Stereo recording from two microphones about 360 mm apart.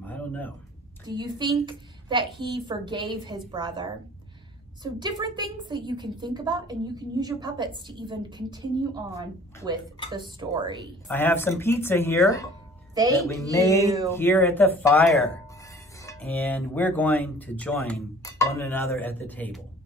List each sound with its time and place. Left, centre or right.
0.0 s a sound: centre
1.0 s a woman's voice: centre
11.1 s speech: centre
12.9 s a woman's voice: centre
13.2 s speech: centre